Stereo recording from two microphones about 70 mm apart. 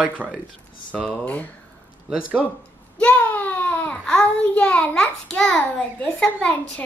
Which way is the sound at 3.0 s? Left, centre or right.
Centre.